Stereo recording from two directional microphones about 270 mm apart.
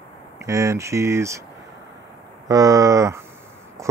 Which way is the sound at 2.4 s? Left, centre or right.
Centre.